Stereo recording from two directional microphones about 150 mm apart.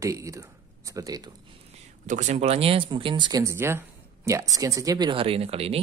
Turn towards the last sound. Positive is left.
turn(degrees=-40)  # may be behind; listen again after turning